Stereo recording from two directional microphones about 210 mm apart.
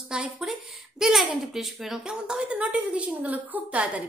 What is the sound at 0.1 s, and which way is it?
A woman's voice, 5° right (ahead or behind).